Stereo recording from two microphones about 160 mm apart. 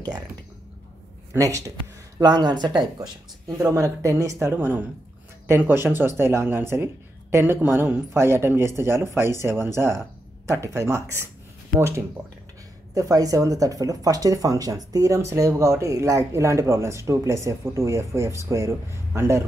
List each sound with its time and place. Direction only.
1.3 s speech: 20° right (ahead or behind)
12.9 s speech: 20° right (ahead or behind)